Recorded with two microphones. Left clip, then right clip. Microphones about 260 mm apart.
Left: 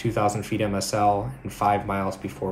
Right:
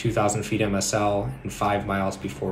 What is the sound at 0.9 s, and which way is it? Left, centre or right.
Speech, centre.